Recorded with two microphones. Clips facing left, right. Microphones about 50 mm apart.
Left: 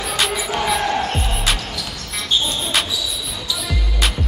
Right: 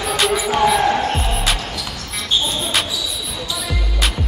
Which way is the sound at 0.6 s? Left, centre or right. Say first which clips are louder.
Right 4 dB; centre.